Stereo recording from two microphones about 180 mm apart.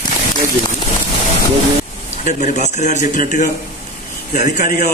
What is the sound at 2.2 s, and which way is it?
A man's voice, 40° left (ahead or behind).